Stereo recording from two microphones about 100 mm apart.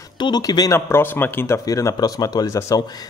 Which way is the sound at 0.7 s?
25° left (ahead or behind).